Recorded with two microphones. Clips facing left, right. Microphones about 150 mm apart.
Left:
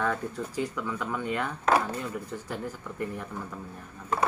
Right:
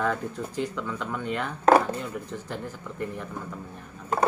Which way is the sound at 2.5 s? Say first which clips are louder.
Even; 5° left (ahead or behind).